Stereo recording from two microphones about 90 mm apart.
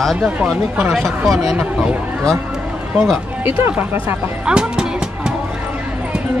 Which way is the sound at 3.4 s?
25° right (ahead or behind).